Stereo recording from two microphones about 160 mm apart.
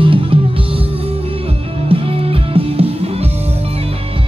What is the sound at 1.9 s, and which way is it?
Music, 35° right (ahead or behind).